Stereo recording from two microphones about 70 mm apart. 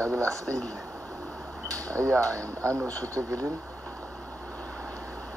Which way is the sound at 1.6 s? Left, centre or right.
Right.